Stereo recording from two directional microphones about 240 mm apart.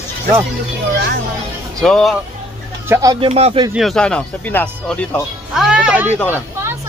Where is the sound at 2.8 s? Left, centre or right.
Centre.